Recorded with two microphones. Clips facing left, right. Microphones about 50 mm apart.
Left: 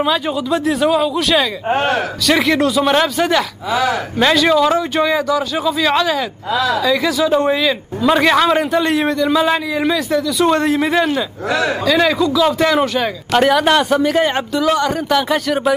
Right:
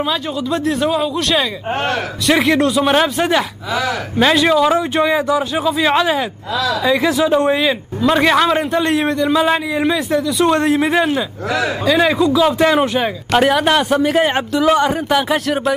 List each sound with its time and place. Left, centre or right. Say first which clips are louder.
0.0 s speech: left 3 dB; centre
1.7 s speech: left 5 dB; left
2.2 s a man's voice: right 1 dB; centre
4.5 s a man's voice: even; centre
6.5 s speech: left 2 dB; left
6.8 s speech: right 1 dB; right
7.2 s a man's voice: left 2 dB; centre
11.4 s speech: left 2 dB; left
11.8 s speech: right 2 dB; right
13.4 s a man's voice: left 1 dB; centre
15.2 s speech: left 1 dB; centre